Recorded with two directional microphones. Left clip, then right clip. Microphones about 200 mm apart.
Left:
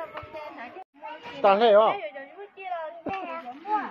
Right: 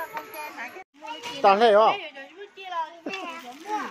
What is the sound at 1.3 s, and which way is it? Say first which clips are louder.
Speech: right 1 dB; 10° right (ahead or behind).